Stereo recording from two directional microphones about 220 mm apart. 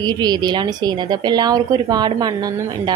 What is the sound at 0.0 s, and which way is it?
Speech, 20° right (ahead or behind).